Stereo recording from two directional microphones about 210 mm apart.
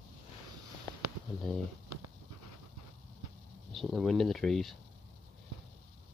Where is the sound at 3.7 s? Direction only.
Centre (ahead or behind).